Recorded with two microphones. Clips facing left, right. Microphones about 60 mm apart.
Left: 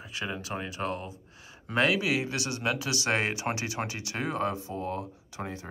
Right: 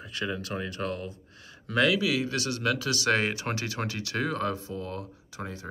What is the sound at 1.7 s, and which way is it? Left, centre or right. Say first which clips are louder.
Speech: right 1 dB; left.